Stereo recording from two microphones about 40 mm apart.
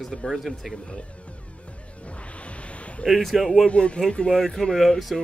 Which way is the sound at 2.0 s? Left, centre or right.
Left.